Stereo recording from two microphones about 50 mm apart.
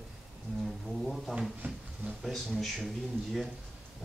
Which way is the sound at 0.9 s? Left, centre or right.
Centre.